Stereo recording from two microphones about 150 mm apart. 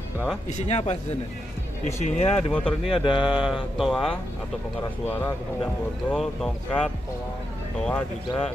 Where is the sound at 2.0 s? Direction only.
50° left (ahead or behind).